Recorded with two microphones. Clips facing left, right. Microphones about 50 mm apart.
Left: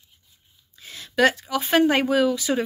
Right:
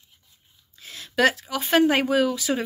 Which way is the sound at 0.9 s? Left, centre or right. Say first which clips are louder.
Left 1 dB; centre.